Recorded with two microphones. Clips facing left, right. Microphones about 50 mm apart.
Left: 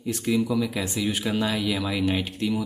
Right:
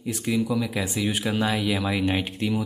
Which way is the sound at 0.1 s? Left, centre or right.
Centre.